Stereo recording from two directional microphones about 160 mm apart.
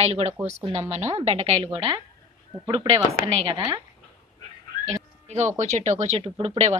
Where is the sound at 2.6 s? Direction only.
25° right (ahead or behind).